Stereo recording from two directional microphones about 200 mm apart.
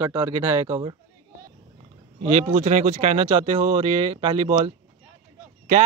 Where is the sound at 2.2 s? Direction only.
35° right (ahead or behind).